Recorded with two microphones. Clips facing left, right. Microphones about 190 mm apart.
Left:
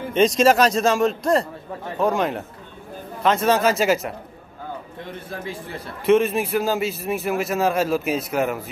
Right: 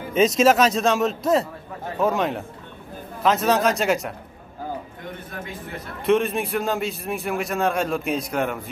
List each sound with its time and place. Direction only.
0.1 s a man's voice: 5° right (ahead or behind)
5.3 s a man's voice: 30° left (ahead or behind)
6.0 s a man's voice: centre (ahead or behind)